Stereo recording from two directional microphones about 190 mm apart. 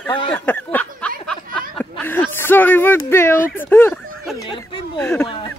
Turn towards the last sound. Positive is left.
turn(degrees=10)  # may be behind; listen again after turning